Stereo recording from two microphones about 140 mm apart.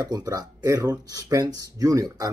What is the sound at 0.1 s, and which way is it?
Speech, 25° right (ahead or behind).